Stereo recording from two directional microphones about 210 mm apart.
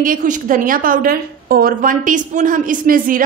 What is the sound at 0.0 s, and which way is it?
A woman's voice, 40° right (ahead or behind).